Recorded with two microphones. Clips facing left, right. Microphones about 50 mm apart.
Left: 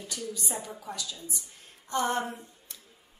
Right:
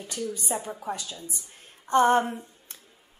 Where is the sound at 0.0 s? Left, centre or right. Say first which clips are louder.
Right 4 dB; right.